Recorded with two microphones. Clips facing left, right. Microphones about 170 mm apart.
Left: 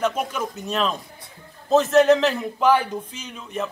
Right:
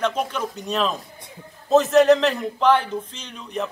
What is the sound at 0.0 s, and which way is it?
A man's voice, 5° left (ahead or behind).